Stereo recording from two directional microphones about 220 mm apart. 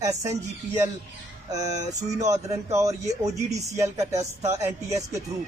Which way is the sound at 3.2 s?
30° right (ahead or behind).